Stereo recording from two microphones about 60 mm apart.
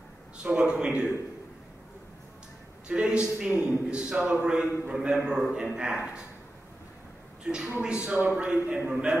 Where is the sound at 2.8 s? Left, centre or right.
Centre.